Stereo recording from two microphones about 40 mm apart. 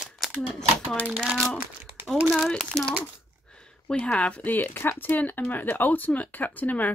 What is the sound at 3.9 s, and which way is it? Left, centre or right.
Speech, left.